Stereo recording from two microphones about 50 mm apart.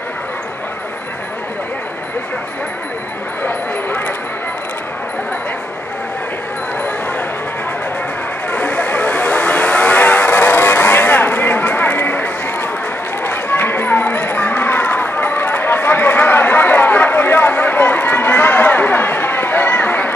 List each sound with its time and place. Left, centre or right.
8.5 s vehicle: left
13.2 s run: left